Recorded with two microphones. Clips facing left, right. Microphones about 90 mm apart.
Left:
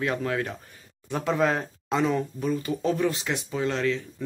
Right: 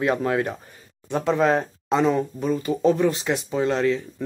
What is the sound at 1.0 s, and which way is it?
Speech, centre (ahead or behind).